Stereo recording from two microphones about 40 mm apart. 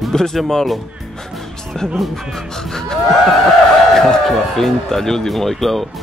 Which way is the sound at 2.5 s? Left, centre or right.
Centre.